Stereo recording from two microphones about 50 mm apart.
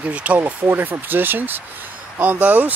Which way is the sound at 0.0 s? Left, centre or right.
Right.